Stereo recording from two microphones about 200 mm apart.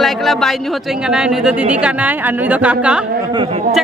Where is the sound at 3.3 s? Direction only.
25° right (ahead or behind).